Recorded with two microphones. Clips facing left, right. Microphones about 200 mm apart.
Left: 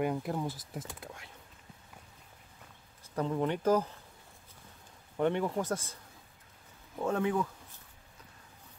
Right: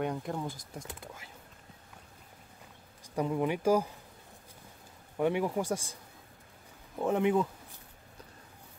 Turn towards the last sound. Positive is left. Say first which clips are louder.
# right 3 dB
turn(degrees=-20)  # may be behind; listen again after turning